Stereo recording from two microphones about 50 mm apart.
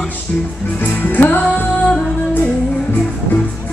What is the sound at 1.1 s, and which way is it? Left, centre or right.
Music, left.